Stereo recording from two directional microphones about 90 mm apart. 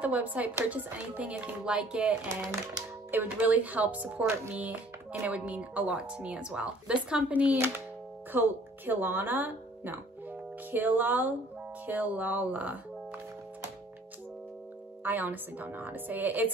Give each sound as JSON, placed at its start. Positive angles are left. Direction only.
{"t": 0.0, "sound": "speech", "side_deg": -15}
{"t": 15.0, "sound": "speech", "side_deg": -20}